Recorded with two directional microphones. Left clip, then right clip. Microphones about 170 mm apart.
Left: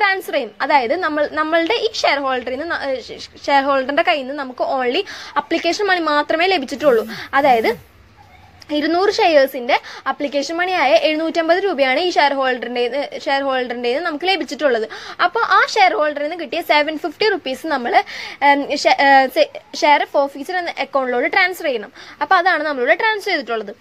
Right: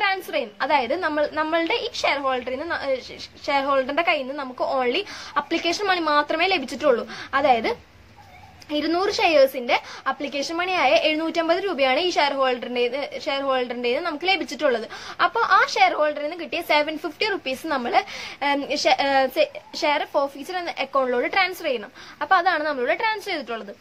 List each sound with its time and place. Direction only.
0.0 s a woman's voice: 30° left (ahead or behind)